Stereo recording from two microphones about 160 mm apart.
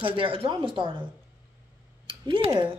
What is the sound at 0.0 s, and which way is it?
Speech, 35° right (ahead or behind).